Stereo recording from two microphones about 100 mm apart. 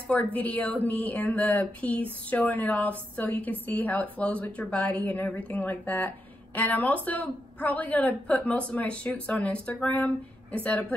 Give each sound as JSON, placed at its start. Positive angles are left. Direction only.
{"t": 0.1, "sound": "a woman's voice", "side_deg": 15}